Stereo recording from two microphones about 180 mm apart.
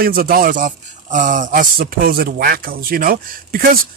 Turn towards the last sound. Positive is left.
turn(degrees=-55)  # may be behind; listen again after turning